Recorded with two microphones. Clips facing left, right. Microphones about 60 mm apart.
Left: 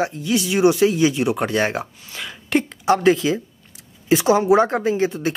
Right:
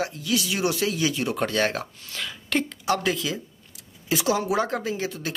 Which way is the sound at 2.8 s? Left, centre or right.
Left.